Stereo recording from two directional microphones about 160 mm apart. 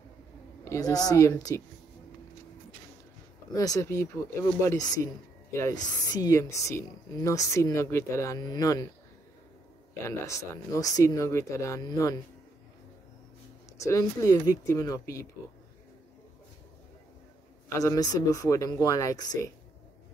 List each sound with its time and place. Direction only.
0.7 s speech: 25° left (ahead or behind)
3.5 s speech: 20° left (ahead or behind)
10.0 s speech: 15° left (ahead or behind)
13.7 s speech: 20° left (ahead or behind)
17.7 s speech: 20° left (ahead or behind)